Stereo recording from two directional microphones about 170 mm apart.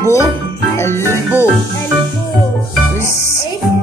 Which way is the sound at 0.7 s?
15° left (ahead or behind).